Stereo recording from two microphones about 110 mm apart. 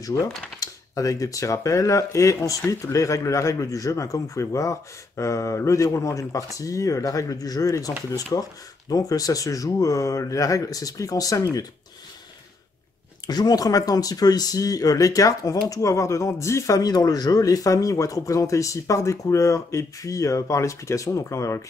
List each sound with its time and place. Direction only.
0.1 s speech: 35° left (ahead or behind)
13.3 s speech: 35° left (ahead or behind)